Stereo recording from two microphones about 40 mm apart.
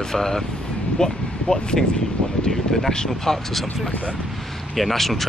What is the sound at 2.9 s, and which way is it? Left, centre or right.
Speech, centre.